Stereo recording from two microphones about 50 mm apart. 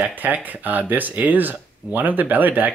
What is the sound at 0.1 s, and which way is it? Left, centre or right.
Speech, right.